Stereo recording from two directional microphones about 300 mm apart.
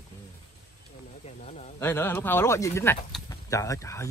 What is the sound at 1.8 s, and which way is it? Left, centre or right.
Speech, centre.